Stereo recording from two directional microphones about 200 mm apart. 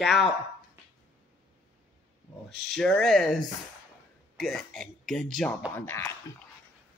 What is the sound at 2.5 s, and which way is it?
Speech, centre (ahead or behind).